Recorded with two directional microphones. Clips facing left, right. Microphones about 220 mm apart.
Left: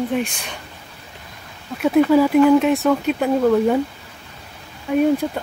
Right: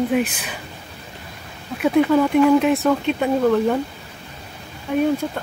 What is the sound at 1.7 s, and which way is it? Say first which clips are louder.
Speech: left 2 dB; centre (ahead or behind).